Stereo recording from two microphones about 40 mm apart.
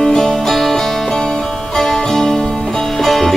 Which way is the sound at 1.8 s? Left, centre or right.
Centre.